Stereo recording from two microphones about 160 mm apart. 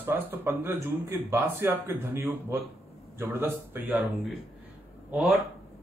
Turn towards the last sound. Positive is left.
turn(degrees=0)  # may be behind; listen again after turning